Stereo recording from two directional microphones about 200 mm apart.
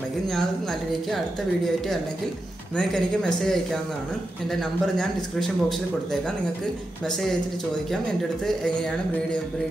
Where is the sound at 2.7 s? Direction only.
5° left (ahead or behind).